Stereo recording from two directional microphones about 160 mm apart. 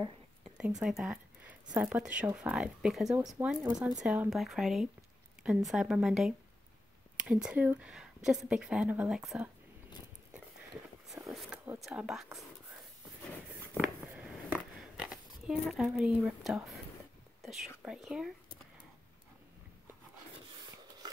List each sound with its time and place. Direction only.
0.6 s a woman's voice: 5° right (ahead or behind)
3.4 s speech: 15° right (ahead or behind)
4.0 s a woman's voice: 5° right (ahead or behind)
11.3 s a sound: 10° right (ahead or behind)
11.8 s speech: 5° right (ahead or behind)
14.0 s a sound: 5° right (ahead or behind)
17.4 s speech: centre (ahead or behind)